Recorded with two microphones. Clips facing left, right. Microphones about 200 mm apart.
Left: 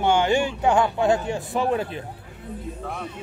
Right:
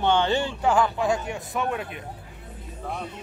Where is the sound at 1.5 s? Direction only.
30° left (ahead or behind).